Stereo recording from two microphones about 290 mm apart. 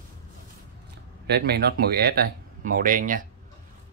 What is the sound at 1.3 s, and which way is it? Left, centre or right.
Speech, right.